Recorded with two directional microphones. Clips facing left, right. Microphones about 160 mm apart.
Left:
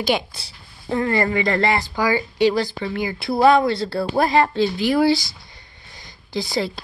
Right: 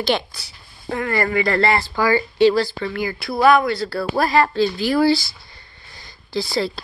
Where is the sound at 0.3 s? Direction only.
30° left (ahead or behind).